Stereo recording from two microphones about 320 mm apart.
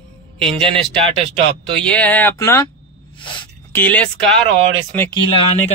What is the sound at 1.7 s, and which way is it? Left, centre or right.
Speech, centre.